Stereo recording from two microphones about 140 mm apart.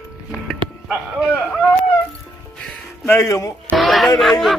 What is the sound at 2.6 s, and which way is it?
Music, 10° left (ahead or behind).